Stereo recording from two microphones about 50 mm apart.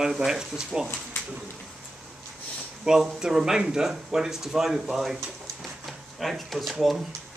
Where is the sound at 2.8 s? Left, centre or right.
Centre.